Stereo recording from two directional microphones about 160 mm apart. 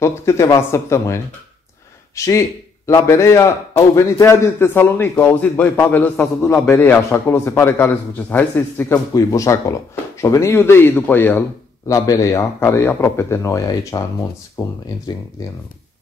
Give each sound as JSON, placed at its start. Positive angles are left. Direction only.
{"t": 0.0, "sound": "a man's voice", "side_deg": 15}